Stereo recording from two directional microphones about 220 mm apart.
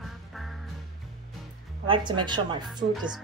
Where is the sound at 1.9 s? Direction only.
20° right (ahead or behind).